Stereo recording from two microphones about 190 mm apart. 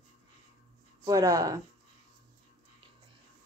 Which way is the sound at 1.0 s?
20° right (ahead or behind).